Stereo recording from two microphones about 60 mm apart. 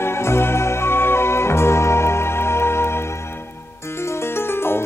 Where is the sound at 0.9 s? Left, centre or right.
Left.